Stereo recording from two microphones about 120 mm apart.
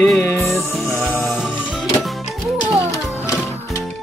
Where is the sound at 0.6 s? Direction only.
Centre (ahead or behind).